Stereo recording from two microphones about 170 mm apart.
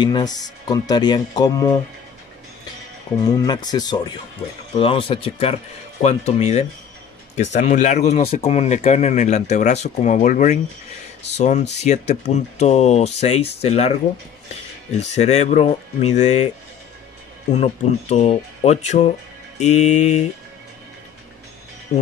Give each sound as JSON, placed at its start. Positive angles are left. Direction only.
{"t": 0.0, "sound": "speech", "side_deg": 25}
{"t": 3.3, "sound": "speech", "side_deg": 25}
{"t": 15.0, "sound": "speech", "side_deg": 40}
{"t": 17.5, "sound": "speech", "side_deg": 40}
{"t": 19.6, "sound": "mantra", "side_deg": 40}